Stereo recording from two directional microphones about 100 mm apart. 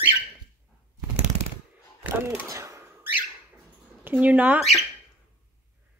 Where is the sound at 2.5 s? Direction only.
30° right (ahead or behind).